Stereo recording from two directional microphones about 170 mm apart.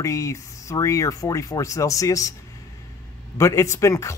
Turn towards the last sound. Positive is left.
turn(degrees=15)  # may be behind; listen again after turning